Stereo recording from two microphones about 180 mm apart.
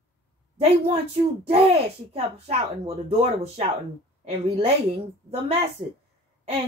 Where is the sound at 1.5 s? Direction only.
35° right (ahead or behind).